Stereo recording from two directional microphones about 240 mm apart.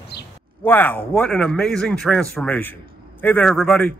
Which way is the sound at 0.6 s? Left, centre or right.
Centre.